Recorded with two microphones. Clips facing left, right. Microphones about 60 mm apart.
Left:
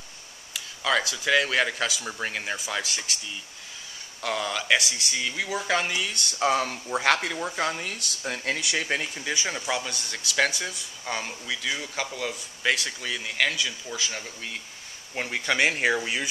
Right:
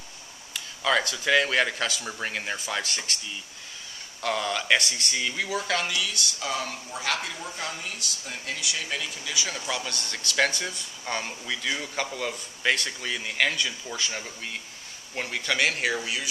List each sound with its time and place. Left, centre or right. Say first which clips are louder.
0.5 s speech: right 1 dB; centre
4.2 s speech: right 1 dB; centre
5.9 s speech: left 1 dB; left
6.1 s speech: left 6 dB; left
9.7 s speech: left 2 dB; centre
10.0 s speech: right 1 dB; centre
15.1 s speech: left 2 dB; centre